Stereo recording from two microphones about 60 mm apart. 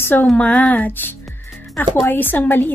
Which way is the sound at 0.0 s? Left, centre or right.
Left.